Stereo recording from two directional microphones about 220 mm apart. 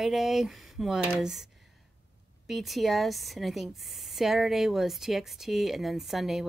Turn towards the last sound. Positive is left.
turn(degrees=0)  # may be behind; listen again after turning